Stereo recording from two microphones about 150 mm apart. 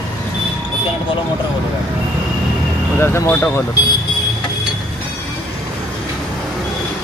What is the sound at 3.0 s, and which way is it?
Speech, 15° left (ahead or behind).